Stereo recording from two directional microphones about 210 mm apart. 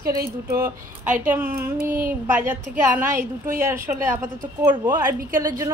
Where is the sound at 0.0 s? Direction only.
45° right (ahead or behind).